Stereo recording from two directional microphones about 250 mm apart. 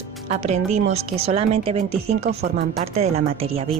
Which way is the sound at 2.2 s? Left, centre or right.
Right.